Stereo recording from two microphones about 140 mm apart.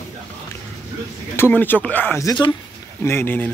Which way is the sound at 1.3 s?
15° left (ahead or behind).